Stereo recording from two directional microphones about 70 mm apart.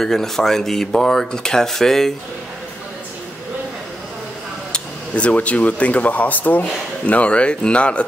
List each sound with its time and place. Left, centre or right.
0.0 s speech: centre
4.7 s speech: centre